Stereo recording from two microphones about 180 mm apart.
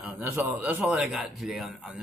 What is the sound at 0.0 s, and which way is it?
A man's voice, 10° right (ahead or behind).